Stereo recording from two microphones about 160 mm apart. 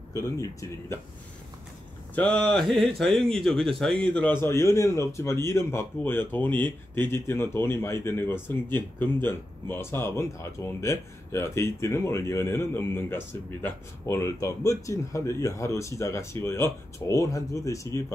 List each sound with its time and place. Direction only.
0.1 s speech: 20° left (ahead or behind)
2.1 s a man's voice: 5° left (ahead or behind)